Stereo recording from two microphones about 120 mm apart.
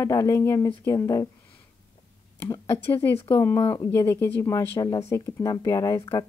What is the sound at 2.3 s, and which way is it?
Speech, 25° left (ahead or behind).